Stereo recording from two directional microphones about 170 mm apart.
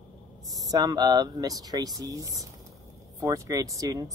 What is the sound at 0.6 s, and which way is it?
Speech, 20° right (ahead or behind).